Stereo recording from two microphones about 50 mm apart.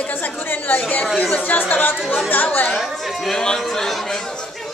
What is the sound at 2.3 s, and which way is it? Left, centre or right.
Speech, left.